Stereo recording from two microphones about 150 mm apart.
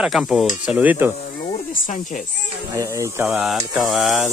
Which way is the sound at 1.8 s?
60° left (ahead or behind).